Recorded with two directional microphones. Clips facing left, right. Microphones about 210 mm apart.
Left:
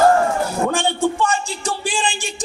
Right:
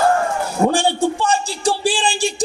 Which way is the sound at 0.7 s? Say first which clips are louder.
Right 2 dB; 35° right (ahead or behind).